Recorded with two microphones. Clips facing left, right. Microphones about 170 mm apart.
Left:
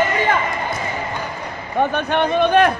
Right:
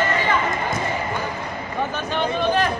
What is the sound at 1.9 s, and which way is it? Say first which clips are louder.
Speech: left 5 dB; 60° left (ahead or behind).